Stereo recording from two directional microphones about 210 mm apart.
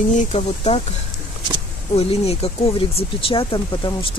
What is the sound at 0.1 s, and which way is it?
Speech, 35° left (ahead or behind).